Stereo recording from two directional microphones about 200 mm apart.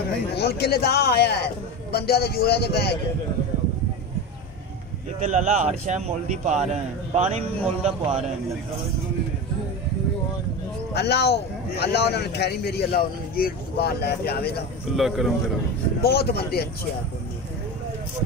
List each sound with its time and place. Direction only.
0.4 s a man's voice: 50° left (ahead or behind)
5.2 s a man's voice: 35° right (ahead or behind)
10.9 s speech: 55° left (ahead or behind)
15.0 s a man's voice: centre (ahead or behind)
16.0 s a man's voice: 50° left (ahead or behind)